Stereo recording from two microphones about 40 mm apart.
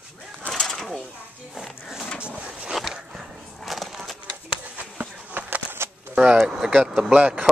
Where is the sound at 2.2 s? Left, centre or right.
Right.